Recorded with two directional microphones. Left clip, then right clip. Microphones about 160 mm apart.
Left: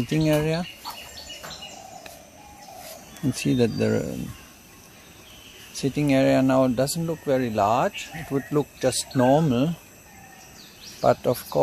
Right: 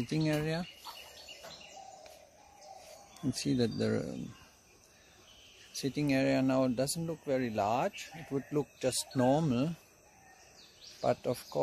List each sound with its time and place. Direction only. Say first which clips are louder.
0.0 s speech: left 11 dB; 15° right (ahead or behind)
3.3 s speech: left 10 dB; 15° right (ahead or behind)
5.8 s speech: left 10 dB; 15° right (ahead or behind)
11.0 s speech: left 11 dB; 5° right (ahead or behind)